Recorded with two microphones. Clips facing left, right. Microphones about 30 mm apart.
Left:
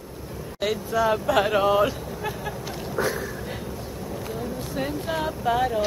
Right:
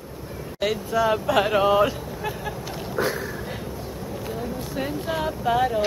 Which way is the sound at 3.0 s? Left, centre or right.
Right.